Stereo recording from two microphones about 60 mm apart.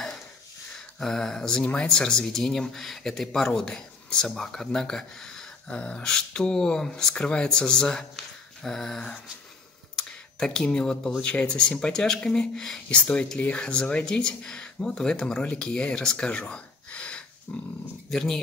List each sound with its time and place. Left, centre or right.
0.7 s speech: centre
9.9 s a sound: centre
11.1 s speech: centre
18.1 s speech: centre